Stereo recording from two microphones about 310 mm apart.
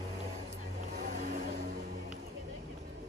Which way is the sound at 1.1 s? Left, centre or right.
Right.